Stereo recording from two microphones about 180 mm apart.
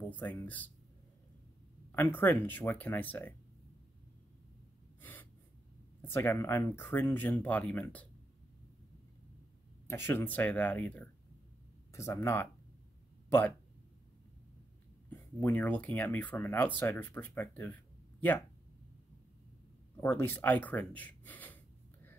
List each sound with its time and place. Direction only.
0.0 s speech: 10° left (ahead or behind)
1.9 s speech: 10° left (ahead or behind)
5.0 s gasp: 10° left (ahead or behind)
6.0 s speech: 15° left (ahead or behind)
9.8 s speech: 15° left (ahead or behind)
15.0 s speech: 10° left (ahead or behind)
20.0 s speech: 10° left (ahead or behind)